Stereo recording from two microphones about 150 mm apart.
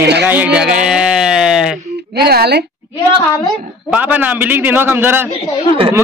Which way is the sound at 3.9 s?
10° right (ahead or behind).